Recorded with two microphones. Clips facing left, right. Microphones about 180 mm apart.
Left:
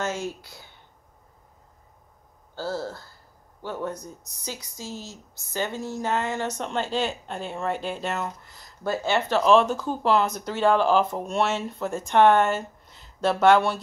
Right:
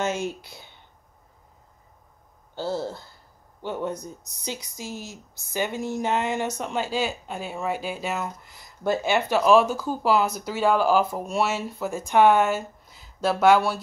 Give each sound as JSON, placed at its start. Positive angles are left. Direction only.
{"t": 0.0, "sound": "speech", "side_deg": -20}
{"t": 2.5, "sound": "a woman's voice", "side_deg": -20}